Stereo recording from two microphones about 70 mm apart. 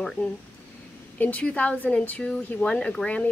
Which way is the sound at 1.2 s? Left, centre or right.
Left.